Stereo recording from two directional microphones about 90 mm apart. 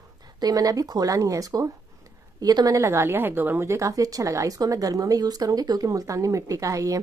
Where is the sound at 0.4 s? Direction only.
40° right (ahead or behind).